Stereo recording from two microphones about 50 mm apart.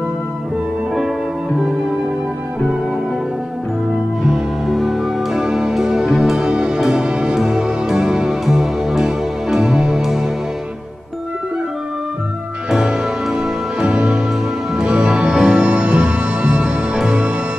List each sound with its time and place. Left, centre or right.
4.3 s music: centre
12.7 s music: centre